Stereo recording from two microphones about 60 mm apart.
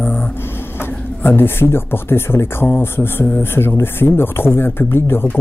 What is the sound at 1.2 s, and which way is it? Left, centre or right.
Speech, left.